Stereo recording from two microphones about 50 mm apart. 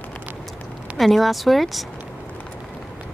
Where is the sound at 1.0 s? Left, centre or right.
Centre.